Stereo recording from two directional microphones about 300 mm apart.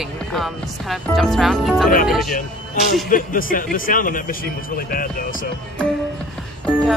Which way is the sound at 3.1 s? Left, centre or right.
Left.